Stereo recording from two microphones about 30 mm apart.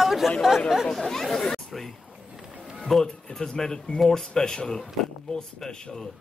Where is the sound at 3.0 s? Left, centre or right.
Left.